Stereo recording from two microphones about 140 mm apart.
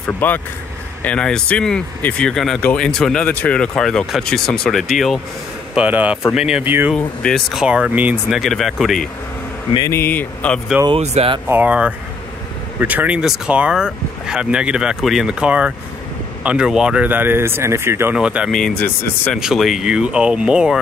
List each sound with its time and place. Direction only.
0.0 s speech: 15° left (ahead or behind); by 6.9 s 15° right (ahead or behind)
6.9 s speech: centre (ahead or behind)
9.8 s speech: 15° left (ahead or behind)
10.9 s speech: 45° right (ahead or behind)
11.4 s speech: 10° right (ahead or behind)
18.1 s speech: 5° right (ahead or behind)
18.5 s speech: 5° left (ahead or behind)